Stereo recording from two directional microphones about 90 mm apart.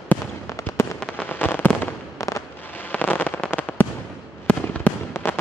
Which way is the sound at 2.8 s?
15° left (ahead or behind).